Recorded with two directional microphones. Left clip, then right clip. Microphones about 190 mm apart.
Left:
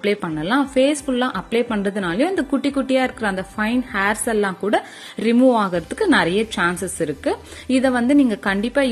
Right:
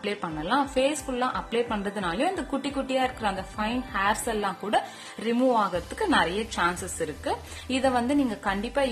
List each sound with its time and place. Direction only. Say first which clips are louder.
0.0 s a woman's voice: left 9 dB; 20° left (ahead or behind)